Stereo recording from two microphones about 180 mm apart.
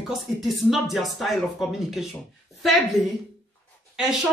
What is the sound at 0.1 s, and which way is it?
A woman's voice, centre (ahead or behind).